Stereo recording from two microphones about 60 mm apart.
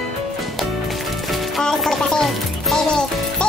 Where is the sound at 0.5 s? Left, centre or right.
Centre.